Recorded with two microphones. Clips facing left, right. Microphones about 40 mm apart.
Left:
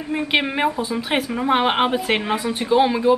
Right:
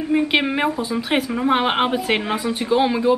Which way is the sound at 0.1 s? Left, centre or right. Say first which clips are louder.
Right 2 dB; centre.